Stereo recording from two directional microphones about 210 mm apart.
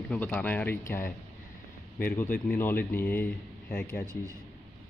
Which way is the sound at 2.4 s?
10° left (ahead or behind).